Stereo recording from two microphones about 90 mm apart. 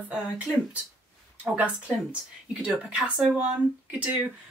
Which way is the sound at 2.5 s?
10° right (ahead or behind).